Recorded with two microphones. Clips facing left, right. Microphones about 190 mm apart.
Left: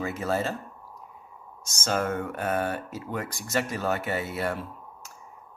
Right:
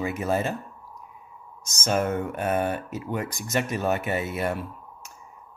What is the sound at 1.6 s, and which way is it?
Speech, 20° right (ahead or behind).